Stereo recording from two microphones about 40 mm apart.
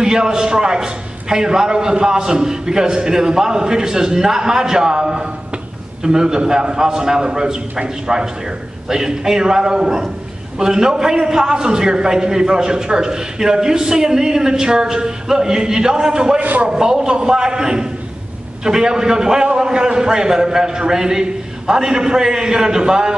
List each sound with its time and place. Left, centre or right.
0.0 s a man's voice: centre
16.3 s a man's voice: right
16.7 s a man's voice: centre